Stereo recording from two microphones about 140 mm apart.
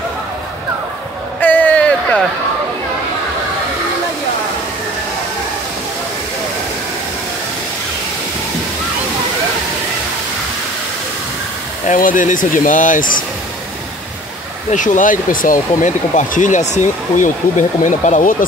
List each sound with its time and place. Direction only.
1.4 s a sound: 10° left (ahead or behind)
11.8 s speech: 65° left (ahead or behind)
14.7 s speech: 65° left (ahead or behind)